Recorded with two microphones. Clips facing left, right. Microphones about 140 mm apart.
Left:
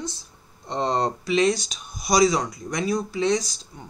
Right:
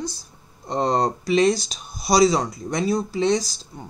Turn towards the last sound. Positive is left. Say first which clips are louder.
# right 2 dB
turn(degrees=-30)  # may be behind; listen again after turning